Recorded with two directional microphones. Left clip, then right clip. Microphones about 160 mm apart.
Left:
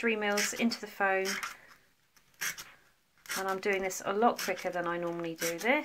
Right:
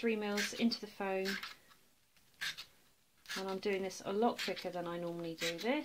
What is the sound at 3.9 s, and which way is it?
Speech, 35° right (ahead or behind).